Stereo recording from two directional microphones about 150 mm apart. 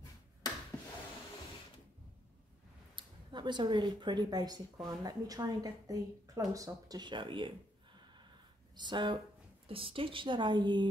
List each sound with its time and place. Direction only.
3.0 s a woman's voice: 30° right (ahead or behind)
8.7 s a woman's voice: 30° right (ahead or behind)